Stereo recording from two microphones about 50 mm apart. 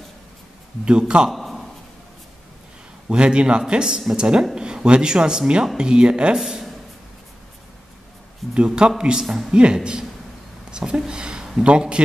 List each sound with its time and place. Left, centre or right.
0.8 s speech: centre
1.3 s a sound: centre
3.1 s a man's voice: centre
8.5 s a man's voice: centre
9.2 s speech: centre
9.5 s speech: centre